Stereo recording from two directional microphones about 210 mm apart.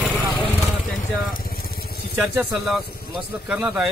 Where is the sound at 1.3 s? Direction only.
45° left (ahead or behind).